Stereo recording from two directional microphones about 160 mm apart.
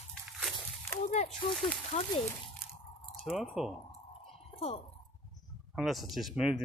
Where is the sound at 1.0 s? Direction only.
45° left (ahead or behind).